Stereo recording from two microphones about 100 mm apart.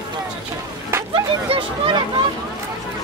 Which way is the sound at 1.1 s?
55° right (ahead or behind).